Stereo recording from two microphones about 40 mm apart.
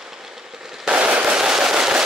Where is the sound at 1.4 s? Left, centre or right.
Centre.